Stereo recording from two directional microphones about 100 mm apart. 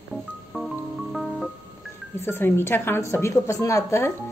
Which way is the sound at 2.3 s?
25° left (ahead or behind).